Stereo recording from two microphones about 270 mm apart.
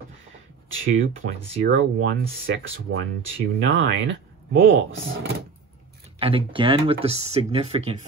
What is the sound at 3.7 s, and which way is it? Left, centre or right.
Speech, right.